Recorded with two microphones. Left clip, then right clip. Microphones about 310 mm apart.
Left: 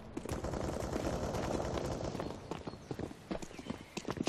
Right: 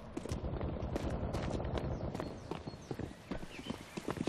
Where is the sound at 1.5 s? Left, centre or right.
Left.